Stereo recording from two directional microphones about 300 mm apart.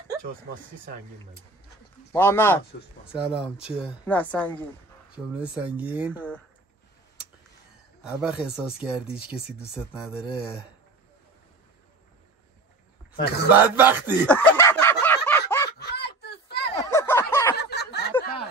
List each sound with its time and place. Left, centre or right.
2.1 s speech: centre
3.1 s speech: centre
8.0 s speech: centre
13.1 s speech: left
13.7 s speech: centre
14.2 s fowl: centre
15.8 s a sound: left
16.9 s a sound: centre
17.6 s snicker: left